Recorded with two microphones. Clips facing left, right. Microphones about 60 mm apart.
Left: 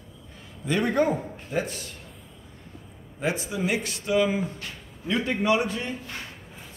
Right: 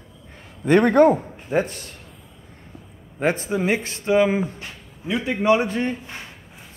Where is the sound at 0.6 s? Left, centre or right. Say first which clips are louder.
Right 9 dB; right.